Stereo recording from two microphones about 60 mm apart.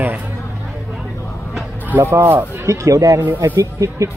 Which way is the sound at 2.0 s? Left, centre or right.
Right.